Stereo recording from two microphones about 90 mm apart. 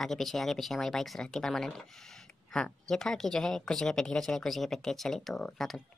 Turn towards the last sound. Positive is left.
turn(degrees=5)  # may be behind; listen again after turning